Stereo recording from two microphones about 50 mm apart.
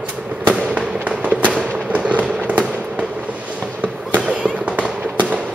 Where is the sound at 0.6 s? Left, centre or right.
Right.